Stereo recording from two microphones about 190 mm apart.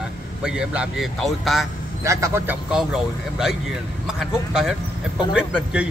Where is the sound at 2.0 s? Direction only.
15° right (ahead or behind).